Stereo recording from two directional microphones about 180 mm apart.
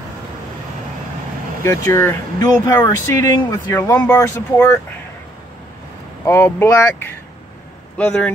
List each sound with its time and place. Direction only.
1.6 s speech: 15° left (ahead or behind)
6.2 s speech: 15° left (ahead or behind)